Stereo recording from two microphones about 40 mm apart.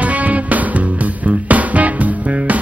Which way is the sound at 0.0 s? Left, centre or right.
Right.